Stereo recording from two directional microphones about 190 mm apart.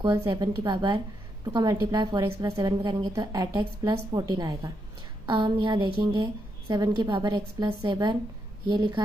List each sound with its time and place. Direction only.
0.0 s a woman's voice: 20° right (ahead or behind)